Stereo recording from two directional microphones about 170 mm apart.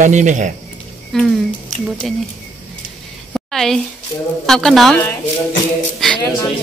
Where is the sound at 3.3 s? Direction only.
Centre (ahead or behind).